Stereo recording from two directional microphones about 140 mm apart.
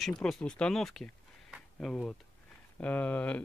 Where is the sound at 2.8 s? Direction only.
10° left (ahead or behind).